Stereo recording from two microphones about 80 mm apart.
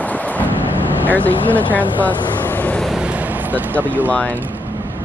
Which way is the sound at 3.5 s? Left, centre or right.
Right.